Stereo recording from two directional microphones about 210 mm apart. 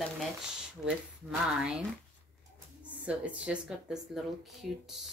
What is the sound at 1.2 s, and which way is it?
Speech, 5° right (ahead or behind).